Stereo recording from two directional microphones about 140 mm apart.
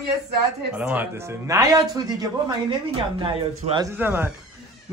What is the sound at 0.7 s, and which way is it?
Speech, 10° right (ahead or behind).